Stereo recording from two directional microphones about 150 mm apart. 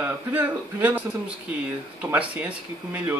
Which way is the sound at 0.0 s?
10° right (ahead or behind).